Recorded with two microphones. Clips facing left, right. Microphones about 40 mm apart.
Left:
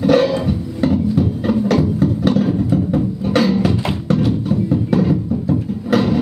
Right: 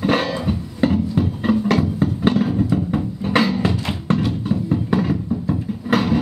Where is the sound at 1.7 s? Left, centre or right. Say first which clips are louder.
Left 3 dB; centre.